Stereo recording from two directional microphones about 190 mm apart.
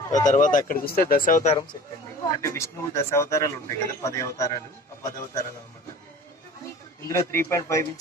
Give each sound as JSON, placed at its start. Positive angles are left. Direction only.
{"t": 0.1, "sound": "speech", "side_deg": 40}
{"t": 2.3, "sound": "a man's voice", "side_deg": 15}
{"t": 7.1, "sound": "a man's voice", "side_deg": 15}